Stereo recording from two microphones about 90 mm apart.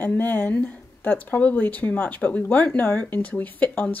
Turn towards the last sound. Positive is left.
turn(degrees=15)  # may be behind; listen again after turning